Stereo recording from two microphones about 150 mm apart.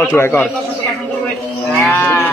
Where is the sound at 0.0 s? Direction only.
15° left (ahead or behind).